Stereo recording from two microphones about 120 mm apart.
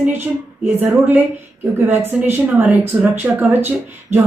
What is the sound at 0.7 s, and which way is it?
A woman's voice, 15° right (ahead or behind).